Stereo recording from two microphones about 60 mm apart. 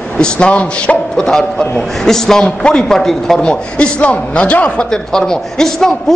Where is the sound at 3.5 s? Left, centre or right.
Centre.